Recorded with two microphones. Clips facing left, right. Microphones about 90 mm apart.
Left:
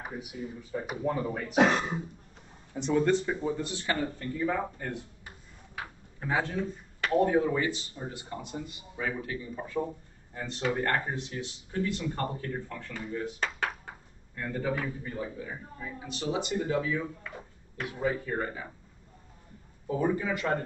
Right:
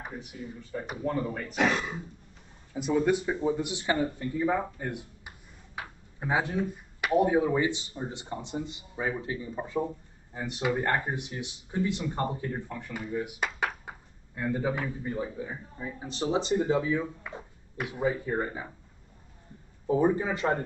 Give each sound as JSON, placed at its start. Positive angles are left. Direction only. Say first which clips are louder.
{"t": 0.0, "sound": "speech", "louder": "left 2 dB", "side_deg": 5}
{"t": 2.7, "sound": "a man's voice", "louder": "even", "side_deg": -5}
{"t": 19.9, "sound": "a man's voice", "louder": "right 4 dB", "side_deg": -25}